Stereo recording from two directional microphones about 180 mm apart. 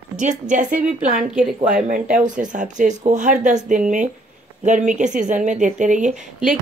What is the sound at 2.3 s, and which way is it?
Speech, 45° right (ahead or behind).